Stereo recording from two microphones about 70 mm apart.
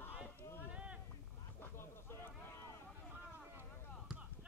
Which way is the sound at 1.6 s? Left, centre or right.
Left.